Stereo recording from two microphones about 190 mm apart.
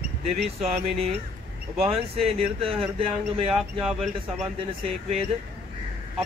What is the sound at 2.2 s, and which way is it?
Speech, 30° right (ahead or behind).